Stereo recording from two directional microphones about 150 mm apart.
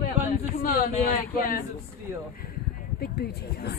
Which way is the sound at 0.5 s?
70° left (ahead or behind).